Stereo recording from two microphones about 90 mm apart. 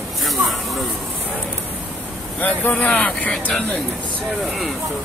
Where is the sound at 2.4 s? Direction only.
20° left (ahead or behind).